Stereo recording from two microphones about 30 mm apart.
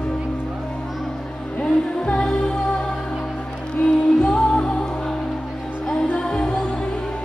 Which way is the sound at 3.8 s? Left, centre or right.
Left.